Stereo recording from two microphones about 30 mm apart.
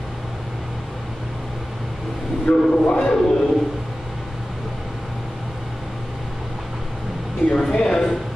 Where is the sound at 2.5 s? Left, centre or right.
Left.